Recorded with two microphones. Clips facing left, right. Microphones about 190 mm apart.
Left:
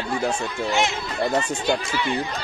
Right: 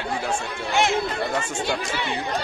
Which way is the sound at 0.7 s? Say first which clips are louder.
Right 2 dB; 55° right (ahead or behind).